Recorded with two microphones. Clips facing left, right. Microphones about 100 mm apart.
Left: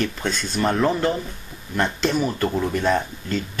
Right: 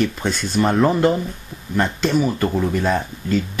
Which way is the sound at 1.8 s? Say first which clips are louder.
Right 3 dB; 10° right (ahead or behind).